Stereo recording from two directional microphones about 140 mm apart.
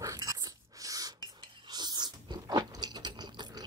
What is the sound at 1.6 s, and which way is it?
Chewing, 30° right (ahead or behind).